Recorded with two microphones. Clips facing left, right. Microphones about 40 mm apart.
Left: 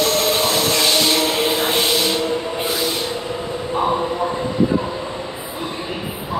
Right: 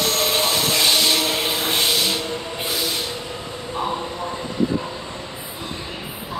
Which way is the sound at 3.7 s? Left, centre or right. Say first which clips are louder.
Left 6 dB; centre.